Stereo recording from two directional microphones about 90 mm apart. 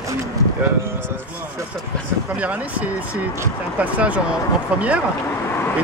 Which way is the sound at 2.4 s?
15° right (ahead or behind).